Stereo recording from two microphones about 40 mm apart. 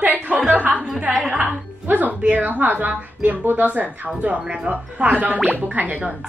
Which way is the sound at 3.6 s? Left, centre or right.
Right.